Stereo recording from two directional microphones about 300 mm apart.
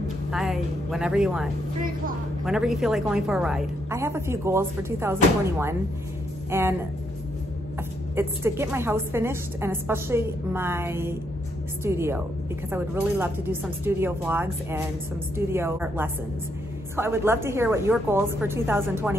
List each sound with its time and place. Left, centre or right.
0.3 s speech: centre
1.8 s speech: right
2.4 s a woman's voice: centre
6.5 s a woman's voice: centre
8.2 s a woman's voice: centre